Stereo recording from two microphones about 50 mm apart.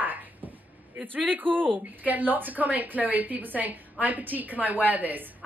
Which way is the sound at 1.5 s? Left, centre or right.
Centre.